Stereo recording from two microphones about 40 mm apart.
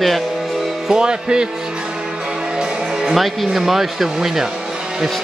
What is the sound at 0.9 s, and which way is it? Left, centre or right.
Speech, right.